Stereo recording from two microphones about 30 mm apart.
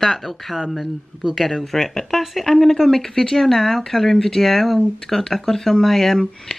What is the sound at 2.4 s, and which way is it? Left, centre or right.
Speech, centre.